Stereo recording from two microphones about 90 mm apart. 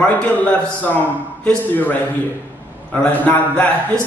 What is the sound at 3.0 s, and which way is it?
Speech, 15° left (ahead or behind).